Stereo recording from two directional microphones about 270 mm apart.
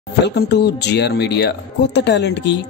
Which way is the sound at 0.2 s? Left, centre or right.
Left.